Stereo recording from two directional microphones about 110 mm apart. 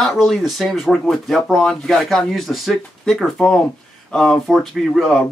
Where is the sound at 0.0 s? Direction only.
Centre (ahead or behind).